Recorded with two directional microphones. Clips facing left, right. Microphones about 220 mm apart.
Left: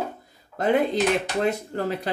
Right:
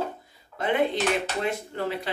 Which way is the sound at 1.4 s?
40° left (ahead or behind).